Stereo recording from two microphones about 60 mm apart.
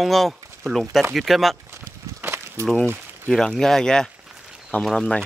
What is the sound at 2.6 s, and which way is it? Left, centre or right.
Speech, right.